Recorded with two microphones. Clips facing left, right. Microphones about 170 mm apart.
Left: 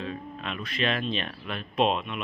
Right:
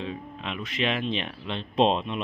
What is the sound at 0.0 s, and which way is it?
Speech, 15° right (ahead or behind).